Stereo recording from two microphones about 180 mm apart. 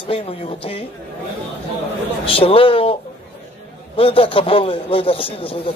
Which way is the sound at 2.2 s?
30° left (ahead or behind).